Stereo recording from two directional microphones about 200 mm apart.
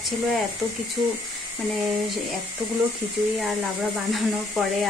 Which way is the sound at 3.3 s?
Centre (ahead or behind).